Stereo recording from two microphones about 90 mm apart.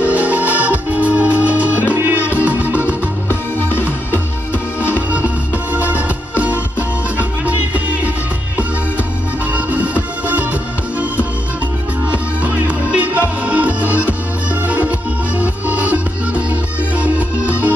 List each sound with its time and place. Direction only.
0.0 s music: 15° right (ahead or behind)
3.3 s music: 25° left (ahead or behind)
5.1 s music: 15° right (ahead or behind)
10.2 s music: 15° right (ahead or behind)
12.4 s music: 15° right (ahead or behind)